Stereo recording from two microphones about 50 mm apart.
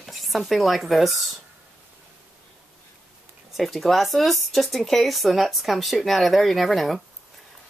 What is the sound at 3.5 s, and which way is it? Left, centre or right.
Speech, centre.